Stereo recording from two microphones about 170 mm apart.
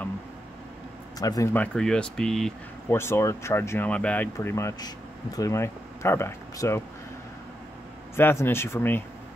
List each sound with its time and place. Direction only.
1.2 s speech: 20° left (ahead or behind); by 2.5 s 5° left (ahead or behind)
2.9 s speech: 15° left (ahead or behind)
8.2 s speech: 15° left (ahead or behind)